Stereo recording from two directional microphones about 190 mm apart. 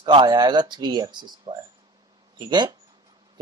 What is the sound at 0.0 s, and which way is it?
A man's voice, 25° right (ahead or behind).